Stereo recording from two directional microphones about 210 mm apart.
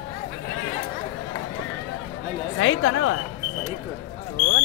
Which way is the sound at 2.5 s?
65° left (ahead or behind).